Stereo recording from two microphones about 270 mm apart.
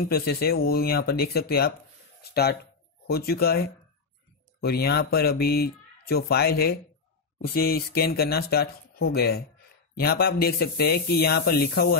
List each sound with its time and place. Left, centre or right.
0.1 s speech: left